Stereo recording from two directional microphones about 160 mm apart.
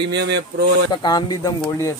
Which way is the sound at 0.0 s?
90° right.